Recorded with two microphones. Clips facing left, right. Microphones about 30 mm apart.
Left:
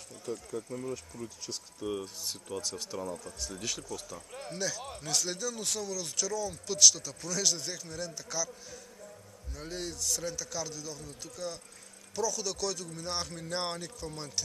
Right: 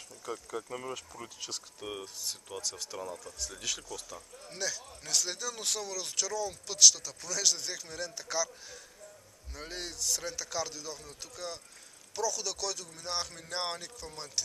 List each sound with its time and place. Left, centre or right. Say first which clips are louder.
0.6 s speech: left 1 dB; right
1.1 s speech: left 3 dB; centre
1.8 s speech: left 6 dB; right
2.6 s speech: right 1 dB; centre